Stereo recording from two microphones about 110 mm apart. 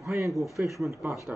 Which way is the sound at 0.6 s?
15° right (ahead or behind).